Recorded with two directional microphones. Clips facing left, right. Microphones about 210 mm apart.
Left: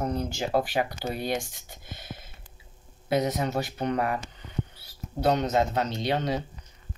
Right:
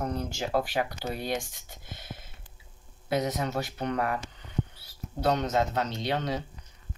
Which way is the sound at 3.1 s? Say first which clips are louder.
Left 3 dB; 20° left (ahead or behind).